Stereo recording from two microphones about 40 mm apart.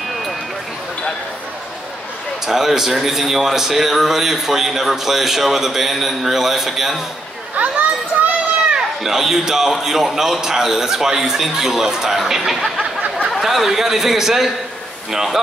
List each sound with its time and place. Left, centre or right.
2.4 s a man's voice: centre
7.5 s children playing: right
9.0 s a man's voice: centre